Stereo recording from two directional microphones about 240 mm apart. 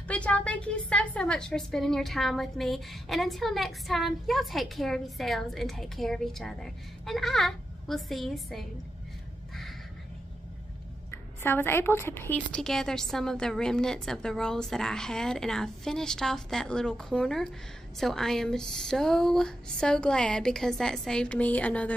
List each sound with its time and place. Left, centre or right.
0.1 s a woman's voice: centre
11.1 s a woman's voice: centre